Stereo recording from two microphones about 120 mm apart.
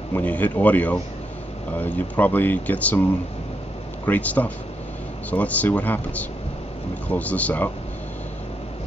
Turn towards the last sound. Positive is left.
turn(degrees=15)  # may be behind; listen again after turning